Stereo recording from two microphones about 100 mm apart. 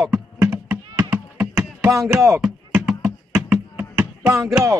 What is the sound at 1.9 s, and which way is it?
Music, 25° right (ahead or behind).